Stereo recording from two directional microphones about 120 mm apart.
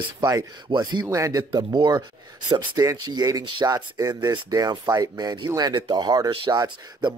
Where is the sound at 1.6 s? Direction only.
40° right (ahead or behind).